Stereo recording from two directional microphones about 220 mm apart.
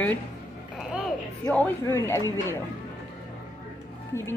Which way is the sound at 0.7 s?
Centre (ahead or behind).